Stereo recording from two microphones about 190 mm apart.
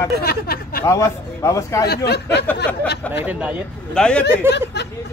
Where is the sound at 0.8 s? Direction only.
15° left (ahead or behind).